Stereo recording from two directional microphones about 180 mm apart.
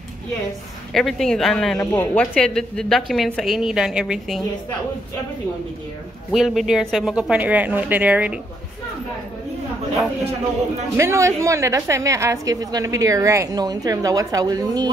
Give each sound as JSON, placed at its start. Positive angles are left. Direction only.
{"t": 0.9, "sound": "speech", "side_deg": 0}
{"t": 6.3, "sound": "speech", "side_deg": 0}
{"t": 11.0, "sound": "a woman's voice", "side_deg": -15}